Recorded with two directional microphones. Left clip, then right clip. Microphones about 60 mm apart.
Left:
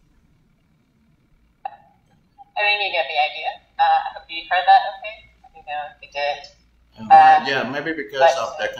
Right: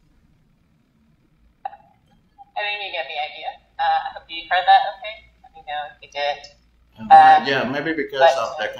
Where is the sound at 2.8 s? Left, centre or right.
Centre.